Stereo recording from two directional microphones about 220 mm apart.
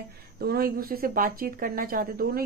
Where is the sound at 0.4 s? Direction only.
45° right (ahead or behind).